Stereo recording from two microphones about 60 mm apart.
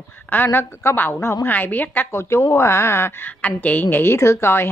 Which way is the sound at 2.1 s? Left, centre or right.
Left.